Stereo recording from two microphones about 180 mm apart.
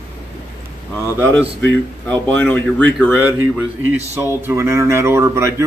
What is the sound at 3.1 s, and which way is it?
Speech, 10° right (ahead or behind).